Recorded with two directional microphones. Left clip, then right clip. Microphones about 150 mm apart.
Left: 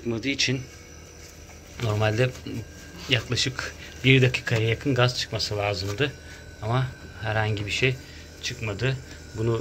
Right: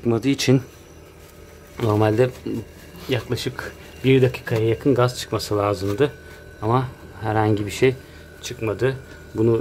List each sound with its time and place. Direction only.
0.0 s speech: 55° right (ahead or behind)
1.8 s speech: 35° right (ahead or behind)
5.1 s speech: 50° right (ahead or behind)
8.4 s speech: 55° right (ahead or behind)